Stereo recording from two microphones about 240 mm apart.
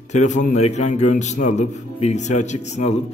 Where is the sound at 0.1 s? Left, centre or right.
Left.